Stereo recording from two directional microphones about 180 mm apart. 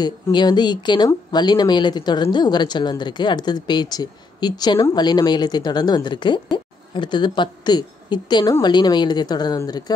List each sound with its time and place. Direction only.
0.0 s speech: 25° left (ahead or behind)